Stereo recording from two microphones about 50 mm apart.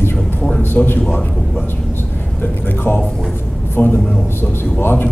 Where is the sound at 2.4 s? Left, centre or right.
Left.